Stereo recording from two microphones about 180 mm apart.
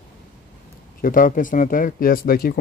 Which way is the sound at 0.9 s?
50° left (ahead or behind).